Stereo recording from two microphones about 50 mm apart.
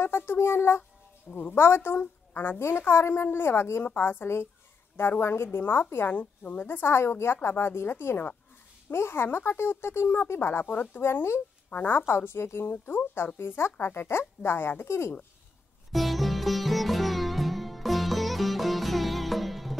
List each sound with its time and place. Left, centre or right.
0.0 s speech: left
1.3 s speech: left
3.8 s speech: left
6.0 s a woman's voice: left
10.6 s speech: left
11.7 s speech: left
12.1 s speech: left
15.9 s sitar: centre